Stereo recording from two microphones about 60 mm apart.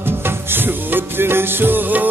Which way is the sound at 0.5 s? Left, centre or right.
Right.